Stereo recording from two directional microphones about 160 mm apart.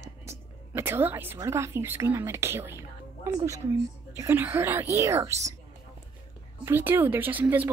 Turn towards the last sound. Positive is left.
turn(degrees=-10)  # may be behind; listen again after turning